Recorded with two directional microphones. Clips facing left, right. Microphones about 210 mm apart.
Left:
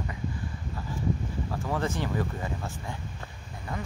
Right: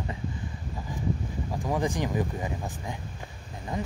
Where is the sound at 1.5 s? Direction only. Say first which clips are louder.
Right 3 dB; 15° right (ahead or behind).